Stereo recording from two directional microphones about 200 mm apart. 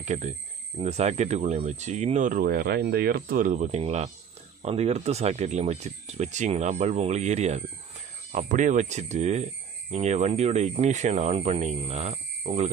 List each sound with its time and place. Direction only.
0.0 s speech: 35° right (ahead or behind)